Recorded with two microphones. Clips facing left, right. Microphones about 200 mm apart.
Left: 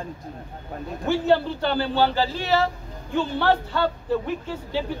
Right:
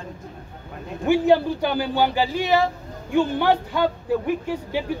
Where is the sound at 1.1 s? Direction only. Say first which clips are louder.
Right 3 dB; 15° right (ahead or behind).